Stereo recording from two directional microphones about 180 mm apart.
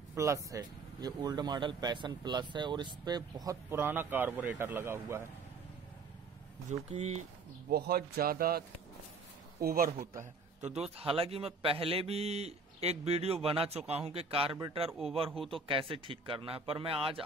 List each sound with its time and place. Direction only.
0.1 s speech: 15° right (ahead or behind)
6.7 s a man's voice: 40° right (ahead or behind)
7.7 s speech: 60° right (ahead or behind)
10.6 s a man's voice: 35° right (ahead or behind)
14.9 s speech: centre (ahead or behind)
15.4 s a man's voice: 30° right (ahead or behind)